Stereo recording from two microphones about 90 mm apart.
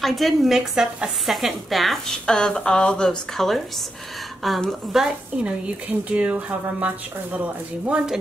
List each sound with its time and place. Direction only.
0.0 s speech: centre (ahead or behind)
5.9 s speech: 15° right (ahead or behind)